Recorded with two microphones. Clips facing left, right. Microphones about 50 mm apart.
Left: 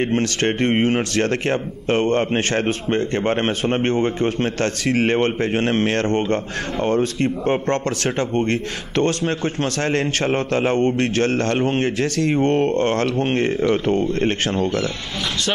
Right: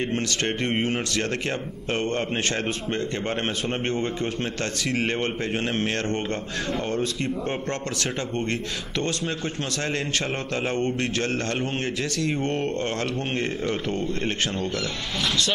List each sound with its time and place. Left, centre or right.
0.0 s a man's voice: left
0.5 s speech: left
1.1 s a man's voice: left
7.6 s a man's voice: left
9.6 s a man's voice: left
12.7 s a man's voice: left